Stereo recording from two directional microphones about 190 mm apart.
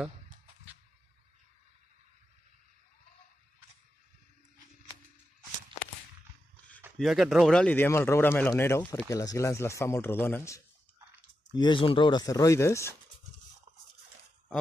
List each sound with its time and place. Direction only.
7.0 s speech: centre (ahead or behind)
11.5 s speech: 25° left (ahead or behind)